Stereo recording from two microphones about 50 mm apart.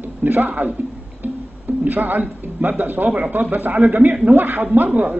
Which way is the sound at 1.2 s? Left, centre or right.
Right.